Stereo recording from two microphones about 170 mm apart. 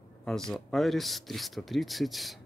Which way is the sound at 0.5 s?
Centre (ahead or behind).